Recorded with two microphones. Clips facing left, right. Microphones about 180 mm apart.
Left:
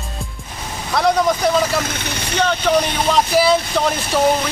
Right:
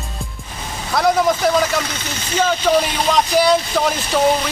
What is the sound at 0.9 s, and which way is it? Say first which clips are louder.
Speech: even; centre (ahead or behind).